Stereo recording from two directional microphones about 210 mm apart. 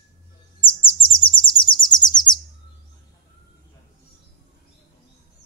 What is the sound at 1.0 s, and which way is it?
Chirp, 25° left (ahead or behind).